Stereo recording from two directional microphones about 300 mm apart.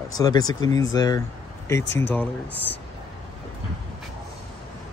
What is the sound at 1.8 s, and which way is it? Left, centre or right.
Speech, left.